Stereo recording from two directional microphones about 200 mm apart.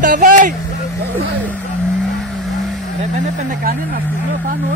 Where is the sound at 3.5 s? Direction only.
45° right (ahead or behind).